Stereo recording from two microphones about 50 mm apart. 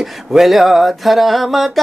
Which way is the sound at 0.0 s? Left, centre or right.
Centre.